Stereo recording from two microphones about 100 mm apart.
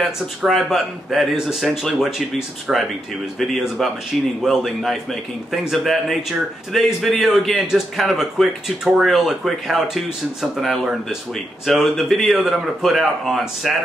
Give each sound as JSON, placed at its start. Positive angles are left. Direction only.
{"t": 0.0, "sound": "speech", "side_deg": 0}